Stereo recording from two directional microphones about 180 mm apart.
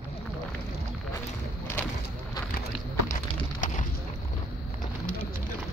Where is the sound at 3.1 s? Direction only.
45° left (ahead or behind).